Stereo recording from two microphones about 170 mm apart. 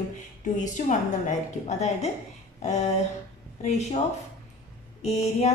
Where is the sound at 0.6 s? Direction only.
45° left (ahead or behind).